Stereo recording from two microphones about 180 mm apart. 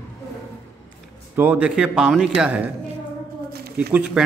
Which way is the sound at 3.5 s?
60° right (ahead or behind).